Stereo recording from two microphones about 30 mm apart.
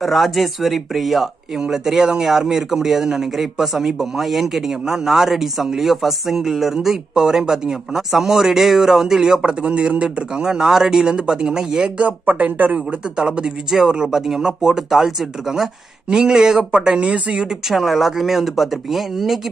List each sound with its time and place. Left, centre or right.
0.0 s speech: centre
1.7 s a man's voice: centre
7.2 s a man's voice: right
9.6 s speech: right
10.6 s speech: centre
12.0 s speech: right
12.7 s speech: right
13.7 s a man's voice: centre
14.4 s a man's voice: right
15.5 s speech: right
17.7 s speech: centre